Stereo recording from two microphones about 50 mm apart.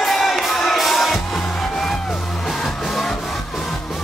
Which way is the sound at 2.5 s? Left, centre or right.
Centre.